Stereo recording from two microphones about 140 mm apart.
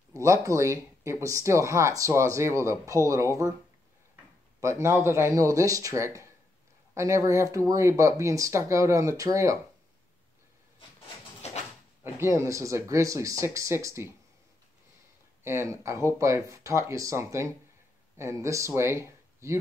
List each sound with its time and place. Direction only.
0.1 s speech: 20° right (ahead or behind)
4.6 s speech: 20° right (ahead or behind)
12.0 s speech: 20° right (ahead or behind)
15.4 s speech: 20° right (ahead or behind)